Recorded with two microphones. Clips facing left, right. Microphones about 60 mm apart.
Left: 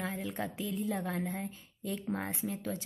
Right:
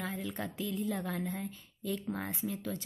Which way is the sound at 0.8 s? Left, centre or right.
Left.